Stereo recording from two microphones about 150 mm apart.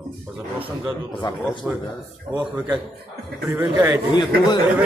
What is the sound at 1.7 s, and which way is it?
A man's voice, 15° right (ahead or behind).